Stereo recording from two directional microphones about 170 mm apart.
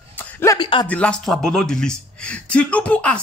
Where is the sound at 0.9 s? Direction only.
5° left (ahead or behind).